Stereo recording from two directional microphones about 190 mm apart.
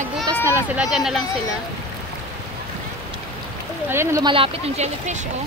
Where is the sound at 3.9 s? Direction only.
15° right (ahead or behind); by 5.2 s 35° right (ahead or behind).